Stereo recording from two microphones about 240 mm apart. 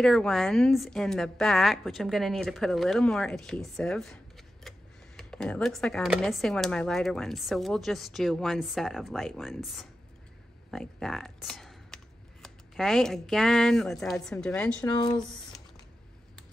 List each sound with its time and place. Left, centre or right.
0.0 s speech: centre
14.9 s speech: centre